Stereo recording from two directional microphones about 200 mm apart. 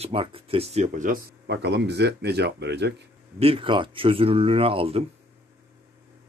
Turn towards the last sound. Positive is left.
turn(degrees=-30)  # may be behind; listen again after turning